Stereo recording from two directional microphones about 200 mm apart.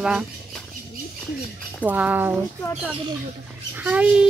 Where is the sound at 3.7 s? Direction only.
5° right (ahead or behind).